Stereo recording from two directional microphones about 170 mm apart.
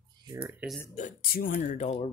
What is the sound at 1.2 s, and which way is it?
Speech, 60° left (ahead or behind).